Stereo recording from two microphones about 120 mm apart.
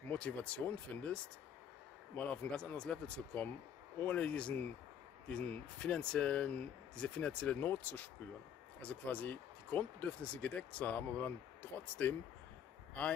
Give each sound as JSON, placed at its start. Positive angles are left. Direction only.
{"t": 0.1, "sound": "speech", "side_deg": 10}